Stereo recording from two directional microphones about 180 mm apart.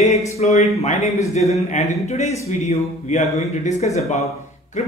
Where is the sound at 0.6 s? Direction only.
40° left (ahead or behind).